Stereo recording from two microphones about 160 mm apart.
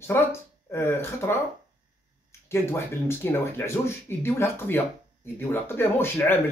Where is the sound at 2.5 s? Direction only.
15° left (ahead or behind).